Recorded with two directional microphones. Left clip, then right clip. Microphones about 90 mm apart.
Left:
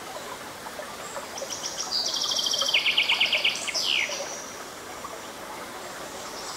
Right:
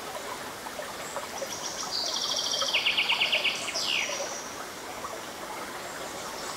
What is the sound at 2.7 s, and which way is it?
Bird, 30° left (ahead or behind).